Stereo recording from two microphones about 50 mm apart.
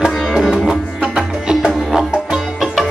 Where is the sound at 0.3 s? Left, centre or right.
Centre.